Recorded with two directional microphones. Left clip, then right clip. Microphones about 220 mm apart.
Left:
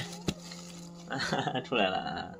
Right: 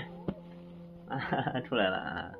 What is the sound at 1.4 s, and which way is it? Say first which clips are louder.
Speech: left 1 dB; centre (ahead or behind).